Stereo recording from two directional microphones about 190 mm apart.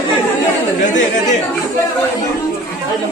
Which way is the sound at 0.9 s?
40° left (ahead or behind).